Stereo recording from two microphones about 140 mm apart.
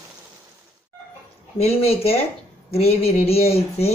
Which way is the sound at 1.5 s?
45° left (ahead or behind).